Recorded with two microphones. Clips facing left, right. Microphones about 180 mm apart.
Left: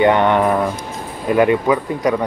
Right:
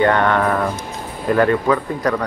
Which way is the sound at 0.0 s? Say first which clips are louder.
Left 2 dB; 20° left (ahead or behind).